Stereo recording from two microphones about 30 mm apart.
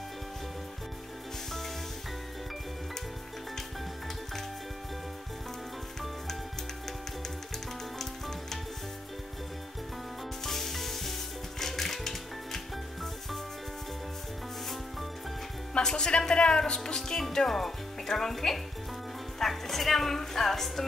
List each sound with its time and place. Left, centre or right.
8.0 s music: centre
10.4 s rub: centre
11.6 s music: centre
15.8 s speech: left
17.2 s music: centre
18.3 s a woman's voice: centre